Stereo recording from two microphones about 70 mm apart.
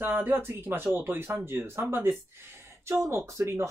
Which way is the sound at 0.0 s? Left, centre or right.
Right.